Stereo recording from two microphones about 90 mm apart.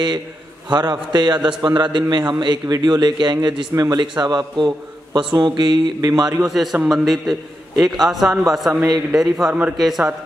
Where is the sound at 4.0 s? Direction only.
50° right (ahead or behind).